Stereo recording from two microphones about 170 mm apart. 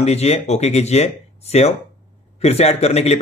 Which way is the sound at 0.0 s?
40° left (ahead or behind).